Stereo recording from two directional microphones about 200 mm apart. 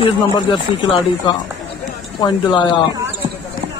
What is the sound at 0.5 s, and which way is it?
Speech, 25° left (ahead or behind).